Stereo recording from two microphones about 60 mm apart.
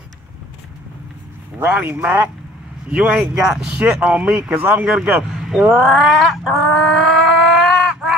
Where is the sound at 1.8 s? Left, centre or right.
Right.